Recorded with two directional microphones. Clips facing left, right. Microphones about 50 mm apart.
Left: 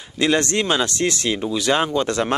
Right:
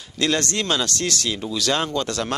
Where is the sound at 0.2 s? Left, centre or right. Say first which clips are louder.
Left 4 dB; left.